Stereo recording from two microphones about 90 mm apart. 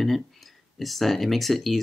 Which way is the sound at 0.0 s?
Centre (ahead or behind).